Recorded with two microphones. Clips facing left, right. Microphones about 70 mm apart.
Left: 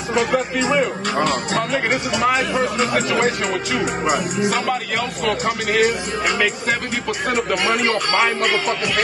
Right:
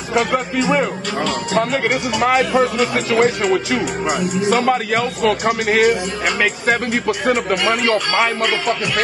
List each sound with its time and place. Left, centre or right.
0.1 s a man's voice: right
1.1 s a man's voice: left
2.1 s a man's voice: right
4.5 s a man's voice: right